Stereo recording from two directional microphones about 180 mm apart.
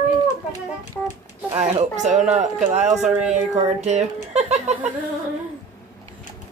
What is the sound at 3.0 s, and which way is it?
Speech, 5° right (ahead or behind).